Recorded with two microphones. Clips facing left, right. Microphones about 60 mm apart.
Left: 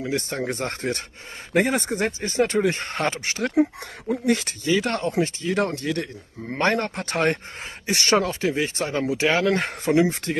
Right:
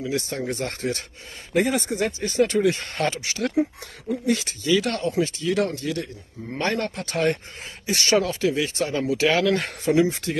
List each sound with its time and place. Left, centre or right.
0.0 s speech: left
4.1 s speech: left
4.6 s speech: left
6.5 s speech: left